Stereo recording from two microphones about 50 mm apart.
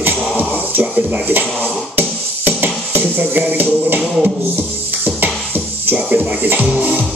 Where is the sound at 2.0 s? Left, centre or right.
Right.